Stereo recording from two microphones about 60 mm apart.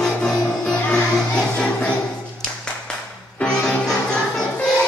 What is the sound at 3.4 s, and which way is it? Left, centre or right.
Music, centre.